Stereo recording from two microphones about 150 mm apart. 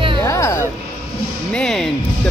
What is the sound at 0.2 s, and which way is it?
Music, 20° left (ahead or behind).